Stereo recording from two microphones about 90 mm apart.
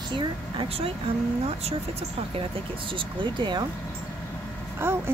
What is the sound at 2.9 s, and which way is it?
Speech, 65° right (ahead or behind).